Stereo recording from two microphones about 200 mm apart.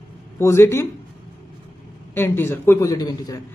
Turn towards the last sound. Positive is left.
turn(degrees=20)  # may be behind; listen again after turning